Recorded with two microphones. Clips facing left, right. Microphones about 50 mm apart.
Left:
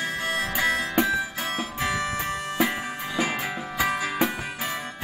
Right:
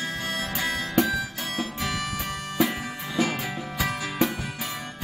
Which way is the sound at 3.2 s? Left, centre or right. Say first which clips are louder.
Right 1 dB; left.